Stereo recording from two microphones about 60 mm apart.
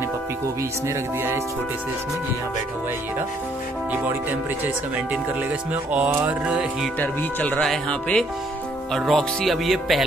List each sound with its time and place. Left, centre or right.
0.8 s speech: right
5.9 s music: right
6.4 s speech: centre
7.0 s speech: left
7.9 s speech: centre
8.9 s speech: centre